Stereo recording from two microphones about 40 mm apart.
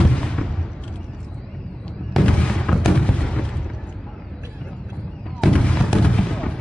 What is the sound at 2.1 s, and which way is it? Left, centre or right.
Fireworks, centre.